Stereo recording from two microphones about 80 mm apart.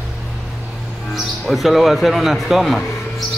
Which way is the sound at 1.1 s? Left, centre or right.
Centre.